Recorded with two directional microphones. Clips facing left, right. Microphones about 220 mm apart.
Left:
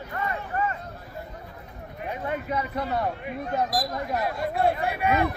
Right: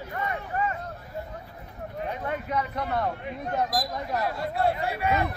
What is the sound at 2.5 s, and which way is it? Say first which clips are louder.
Speech: even; 5° left (ahead or behind).